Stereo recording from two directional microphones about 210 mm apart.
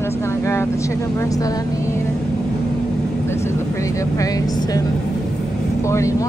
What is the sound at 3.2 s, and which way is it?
Vehicle, 10° left (ahead or behind).